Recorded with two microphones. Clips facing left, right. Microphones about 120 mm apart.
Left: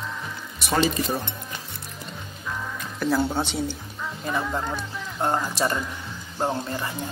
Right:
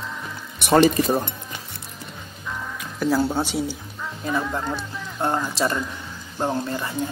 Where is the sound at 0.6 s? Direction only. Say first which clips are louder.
Right 7 dB; 60° right (ahead or behind).